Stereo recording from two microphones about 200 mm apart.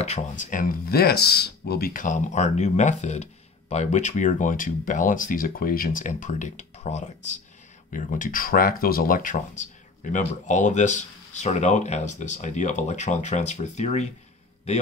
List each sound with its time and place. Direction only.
0.0 s speech: 35° left (ahead or behind)